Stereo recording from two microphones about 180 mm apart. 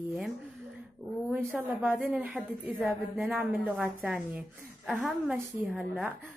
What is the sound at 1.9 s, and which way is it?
A woman's voice, centre (ahead or behind).